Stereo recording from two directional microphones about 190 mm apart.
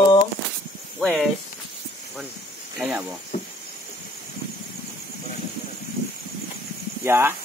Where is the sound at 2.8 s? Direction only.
10° right (ahead or behind).